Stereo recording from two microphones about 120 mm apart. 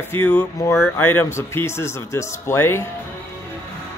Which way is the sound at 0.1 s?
20° left (ahead or behind).